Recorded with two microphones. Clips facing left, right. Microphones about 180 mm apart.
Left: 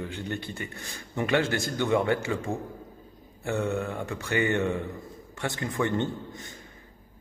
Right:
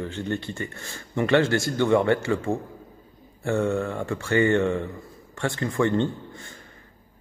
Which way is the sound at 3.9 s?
15° left (ahead or behind).